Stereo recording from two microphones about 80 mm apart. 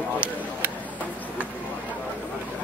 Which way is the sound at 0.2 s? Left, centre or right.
Centre.